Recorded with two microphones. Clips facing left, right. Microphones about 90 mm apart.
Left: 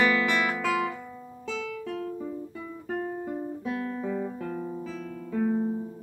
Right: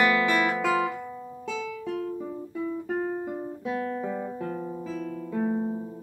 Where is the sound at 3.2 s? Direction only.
10° right (ahead or behind).